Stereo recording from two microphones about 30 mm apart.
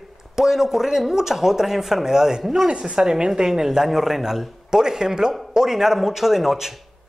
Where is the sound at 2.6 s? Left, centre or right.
Right.